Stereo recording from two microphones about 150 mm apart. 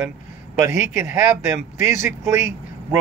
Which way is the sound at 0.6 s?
15° right (ahead or behind).